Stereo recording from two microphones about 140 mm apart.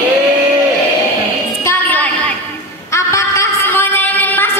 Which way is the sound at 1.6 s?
10° left (ahead or behind).